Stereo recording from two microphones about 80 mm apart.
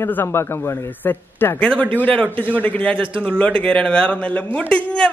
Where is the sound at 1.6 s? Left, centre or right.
Centre.